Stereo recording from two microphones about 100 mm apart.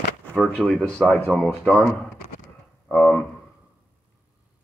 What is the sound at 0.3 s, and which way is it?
Speech, 10° left (ahead or behind).